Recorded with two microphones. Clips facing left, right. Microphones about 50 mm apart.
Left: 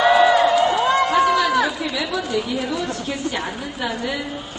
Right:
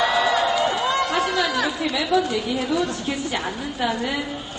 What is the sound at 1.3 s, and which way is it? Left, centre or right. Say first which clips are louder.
Chatter: left 4 dB; left.